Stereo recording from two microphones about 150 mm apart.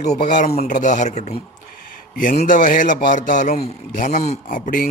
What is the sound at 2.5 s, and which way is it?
Speech, 65° left (ahead or behind).